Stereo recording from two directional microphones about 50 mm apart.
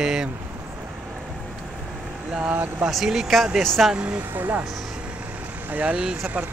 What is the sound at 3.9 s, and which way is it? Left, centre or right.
Speech, right.